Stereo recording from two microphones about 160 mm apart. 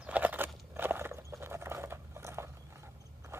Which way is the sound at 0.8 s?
15° right (ahead or behind).